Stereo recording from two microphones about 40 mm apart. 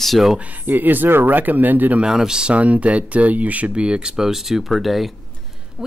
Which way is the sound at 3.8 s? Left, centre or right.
Right.